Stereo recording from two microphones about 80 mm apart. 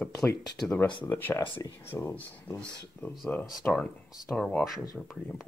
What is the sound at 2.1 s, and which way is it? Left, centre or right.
Speech, left.